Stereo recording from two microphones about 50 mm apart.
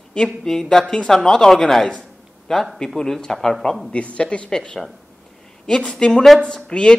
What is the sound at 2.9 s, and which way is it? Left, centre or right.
Speech, centre.